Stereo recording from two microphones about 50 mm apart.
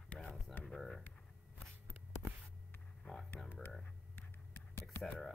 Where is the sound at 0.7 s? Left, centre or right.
Centre.